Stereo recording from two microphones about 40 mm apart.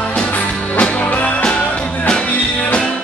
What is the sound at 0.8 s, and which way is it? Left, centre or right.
Music, left.